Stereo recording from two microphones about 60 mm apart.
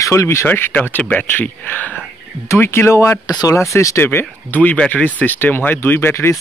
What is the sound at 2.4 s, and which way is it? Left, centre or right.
Speech, left.